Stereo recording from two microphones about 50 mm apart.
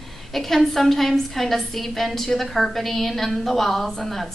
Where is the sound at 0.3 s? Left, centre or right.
Centre.